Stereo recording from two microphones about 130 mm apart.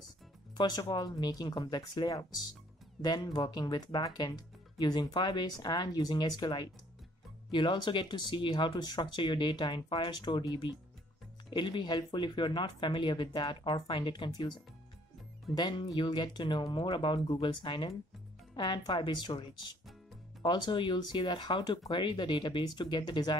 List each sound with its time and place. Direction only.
0.6 s speech: 35° left (ahead or behind)
15.5 s speech: 35° left (ahead or behind)
20.4 s speech: 35° left (ahead or behind)